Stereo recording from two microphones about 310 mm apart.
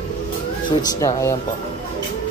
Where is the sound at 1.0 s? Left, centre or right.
Centre.